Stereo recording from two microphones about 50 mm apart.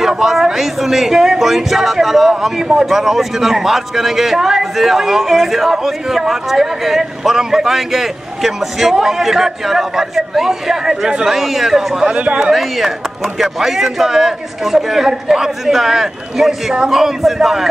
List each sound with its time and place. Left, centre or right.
0.1 s speech: centre
12.1 s speech: right
12.4 s speech: centre